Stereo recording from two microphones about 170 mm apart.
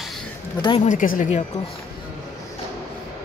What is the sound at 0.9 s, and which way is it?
Speech, 50° left (ahead or behind).